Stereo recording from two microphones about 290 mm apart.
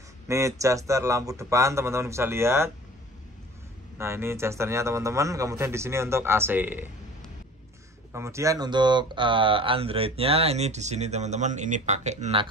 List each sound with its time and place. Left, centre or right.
0.3 s a man's voice: centre
4.0 s a man's voice: centre
8.1 s speech: centre